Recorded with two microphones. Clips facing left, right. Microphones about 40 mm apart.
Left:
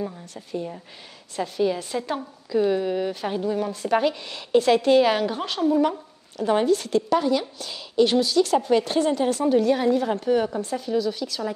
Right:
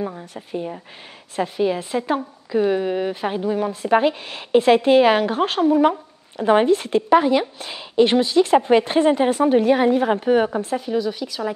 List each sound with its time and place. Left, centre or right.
0.3 s a woman's voice: right